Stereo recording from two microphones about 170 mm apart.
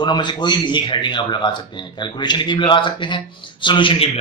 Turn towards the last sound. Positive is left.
turn(degrees=35)  # may be behind; listen again after turning